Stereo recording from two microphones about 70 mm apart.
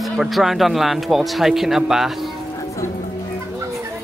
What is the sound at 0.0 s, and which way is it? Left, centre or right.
Speech, centre.